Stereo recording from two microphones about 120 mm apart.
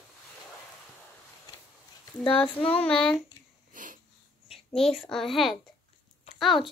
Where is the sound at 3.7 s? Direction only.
90° right.